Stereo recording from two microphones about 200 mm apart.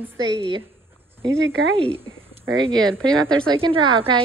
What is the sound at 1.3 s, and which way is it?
Speech, 70° right (ahead or behind).